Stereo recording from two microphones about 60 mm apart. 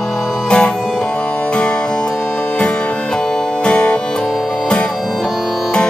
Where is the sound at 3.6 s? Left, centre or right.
Centre.